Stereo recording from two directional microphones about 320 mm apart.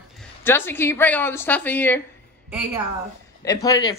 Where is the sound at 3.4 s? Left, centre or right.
Centre.